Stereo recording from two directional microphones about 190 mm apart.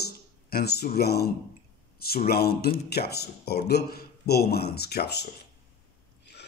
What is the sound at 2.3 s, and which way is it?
A man's voice, 55° left (ahead or behind).